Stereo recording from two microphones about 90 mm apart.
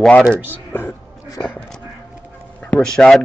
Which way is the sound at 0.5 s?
25° left (ahead or behind).